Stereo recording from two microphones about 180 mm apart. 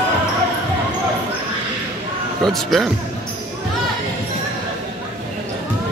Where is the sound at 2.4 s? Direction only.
Centre (ahead or behind).